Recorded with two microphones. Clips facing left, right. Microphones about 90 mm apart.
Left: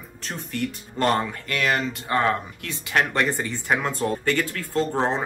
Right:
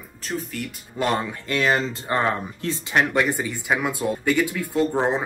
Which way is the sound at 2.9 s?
10° right (ahead or behind).